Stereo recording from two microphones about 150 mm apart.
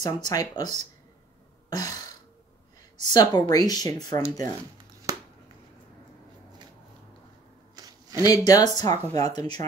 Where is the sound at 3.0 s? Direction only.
30° left (ahead or behind).